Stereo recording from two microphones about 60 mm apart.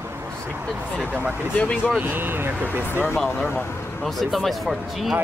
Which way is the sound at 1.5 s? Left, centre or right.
Left.